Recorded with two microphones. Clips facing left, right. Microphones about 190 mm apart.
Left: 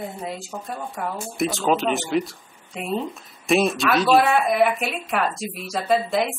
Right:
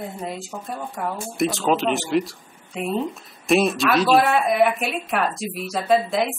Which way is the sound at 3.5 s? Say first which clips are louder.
Right 1 dB; centre (ahead or behind).